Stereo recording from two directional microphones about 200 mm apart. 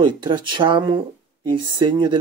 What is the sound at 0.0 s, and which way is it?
Speech, 25° right (ahead or behind).